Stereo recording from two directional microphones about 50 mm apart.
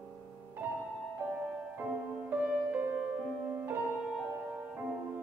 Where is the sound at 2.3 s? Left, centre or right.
Right.